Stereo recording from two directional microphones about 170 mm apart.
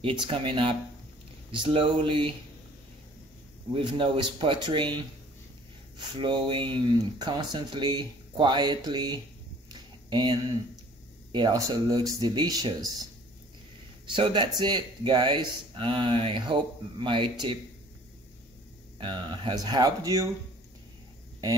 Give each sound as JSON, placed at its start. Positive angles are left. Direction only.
{"t": 0.0, "sound": "speech", "side_deg": -30}
{"t": 3.7, "sound": "speech", "side_deg": -30}
{"t": 5.9, "sound": "speech", "side_deg": -30}
{"t": 9.7, "sound": "a sound", "side_deg": -25}
{"t": 11.3, "sound": "speech", "side_deg": -25}
{"t": 14.0, "sound": "speech", "side_deg": -30}
{"t": 18.9, "sound": "speech", "side_deg": -30}